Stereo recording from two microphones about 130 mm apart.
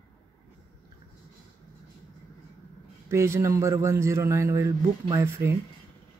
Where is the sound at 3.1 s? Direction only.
20° right (ahead or behind).